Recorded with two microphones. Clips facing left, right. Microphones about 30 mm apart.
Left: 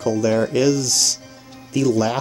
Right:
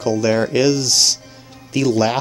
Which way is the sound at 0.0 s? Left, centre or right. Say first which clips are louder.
Right 1 dB; right.